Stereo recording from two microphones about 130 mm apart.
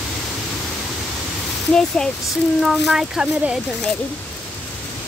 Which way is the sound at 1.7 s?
5° left (ahead or behind).